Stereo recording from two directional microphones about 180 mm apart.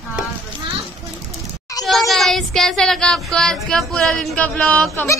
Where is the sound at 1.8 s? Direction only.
Centre (ahead or behind).